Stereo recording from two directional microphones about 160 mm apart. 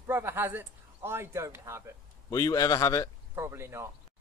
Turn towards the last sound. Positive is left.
turn(degrees=-15)  # may be behind; listen again after turning